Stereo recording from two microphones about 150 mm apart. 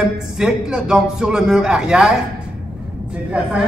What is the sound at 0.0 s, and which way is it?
A man's voice, 5° right (ahead or behind).